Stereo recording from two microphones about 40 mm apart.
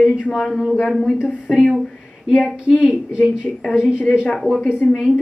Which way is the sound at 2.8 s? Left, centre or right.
Right.